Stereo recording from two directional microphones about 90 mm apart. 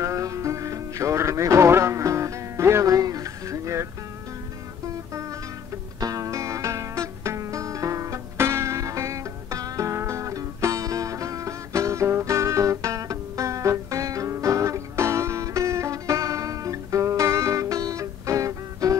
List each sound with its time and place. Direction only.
0.0 s music: 35° right (ahead or behind)
4.8 s music: 35° right (ahead or behind)